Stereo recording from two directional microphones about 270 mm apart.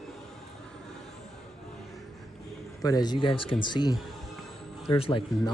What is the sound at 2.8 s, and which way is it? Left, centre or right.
A man's voice, centre.